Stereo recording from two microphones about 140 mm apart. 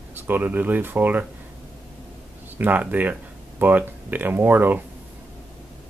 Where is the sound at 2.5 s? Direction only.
10° right (ahead or behind).